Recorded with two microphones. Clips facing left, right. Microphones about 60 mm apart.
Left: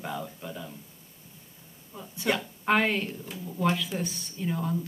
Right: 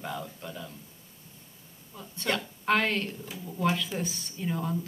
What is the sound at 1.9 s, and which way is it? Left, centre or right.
Speech, centre.